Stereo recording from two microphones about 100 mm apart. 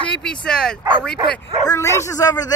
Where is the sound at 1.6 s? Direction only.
35° left (ahead or behind).